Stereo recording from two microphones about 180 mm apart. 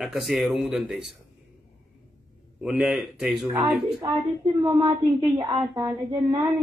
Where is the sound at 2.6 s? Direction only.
Centre (ahead or behind).